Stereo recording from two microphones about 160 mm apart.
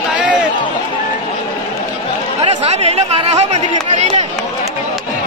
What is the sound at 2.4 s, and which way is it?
Speech, 40° right (ahead or behind).